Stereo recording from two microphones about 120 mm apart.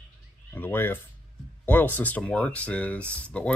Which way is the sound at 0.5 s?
15° left (ahead or behind).